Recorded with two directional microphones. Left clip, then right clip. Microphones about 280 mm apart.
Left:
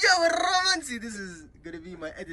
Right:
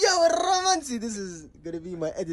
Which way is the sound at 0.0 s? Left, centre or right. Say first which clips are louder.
Right 1 dB; centre.